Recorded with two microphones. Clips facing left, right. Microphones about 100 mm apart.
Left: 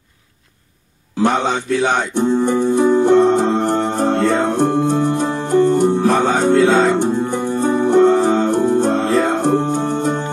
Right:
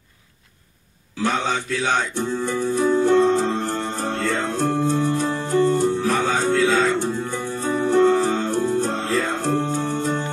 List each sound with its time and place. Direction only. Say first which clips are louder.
1.2 s speech: left 6 dB; 20° left (ahead or behind)
3.7 s music: left 9 dB; 20° left (ahead or behind)
8.5 s music: left 7 dB; 60° left (ahead or behind)
9.2 s music: left 7 dB; 20° left (ahead or behind)